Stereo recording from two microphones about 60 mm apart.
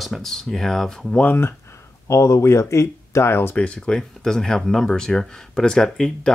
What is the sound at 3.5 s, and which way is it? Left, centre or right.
Speech, centre.